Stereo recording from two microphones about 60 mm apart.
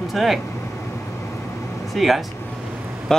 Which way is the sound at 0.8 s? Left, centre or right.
Left.